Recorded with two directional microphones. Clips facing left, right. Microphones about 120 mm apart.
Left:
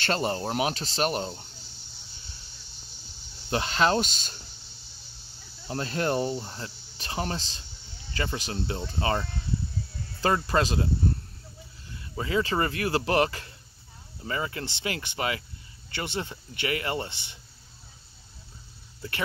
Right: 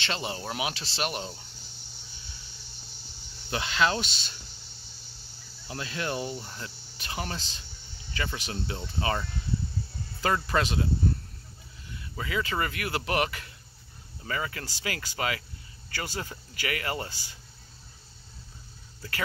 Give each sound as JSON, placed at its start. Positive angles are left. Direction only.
{"t": 0.0, "sound": "speech", "side_deg": 45}
{"t": 3.4, "sound": "speech", "side_deg": 35}
{"t": 5.7, "sound": "speech", "side_deg": 40}
{"t": 6.3, "sound": "speech", "side_deg": 30}
{"t": 11.9, "sound": "speech", "side_deg": 30}